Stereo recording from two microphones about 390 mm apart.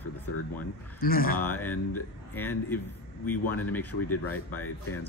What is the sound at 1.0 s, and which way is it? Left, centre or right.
Speech, left.